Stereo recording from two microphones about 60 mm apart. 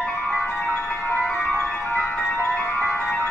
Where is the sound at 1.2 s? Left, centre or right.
Centre.